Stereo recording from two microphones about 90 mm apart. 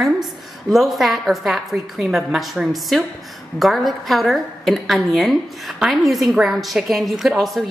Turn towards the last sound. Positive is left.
turn(degrees=0)  # may be behind; listen again after turning